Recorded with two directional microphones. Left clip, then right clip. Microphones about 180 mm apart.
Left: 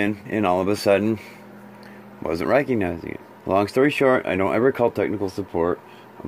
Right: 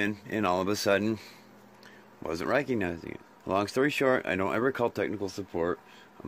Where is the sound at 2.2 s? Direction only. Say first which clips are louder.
Left 8 dB; 15° right (ahead or behind).